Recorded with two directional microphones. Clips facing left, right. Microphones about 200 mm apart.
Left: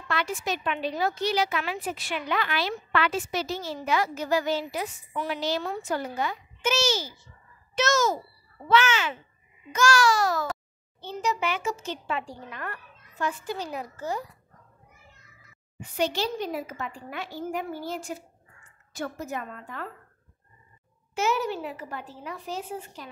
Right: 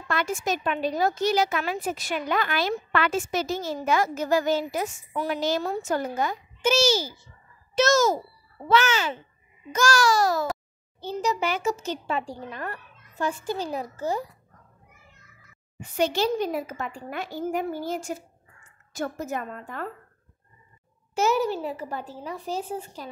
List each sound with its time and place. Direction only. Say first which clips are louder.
0.1 s speech: right 3 dB; 45° right (ahead or behind)
6.6 s speech: right 4 dB; 35° right (ahead or behind)
16.0 s speech: right 4 dB; 50° right (ahead or behind)
21.1 s speech: right 4 dB; 40° right (ahead or behind)